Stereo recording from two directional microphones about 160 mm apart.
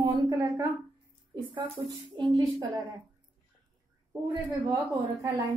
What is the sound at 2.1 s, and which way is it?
Speech, 25° right (ahead or behind).